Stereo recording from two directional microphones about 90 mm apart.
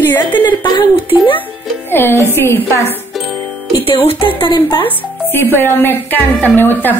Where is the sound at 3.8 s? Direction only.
85° left.